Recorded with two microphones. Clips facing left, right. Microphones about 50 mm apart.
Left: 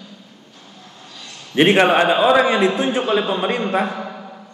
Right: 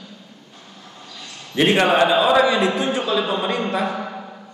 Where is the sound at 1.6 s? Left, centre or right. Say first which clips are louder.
Left 2 dB; left.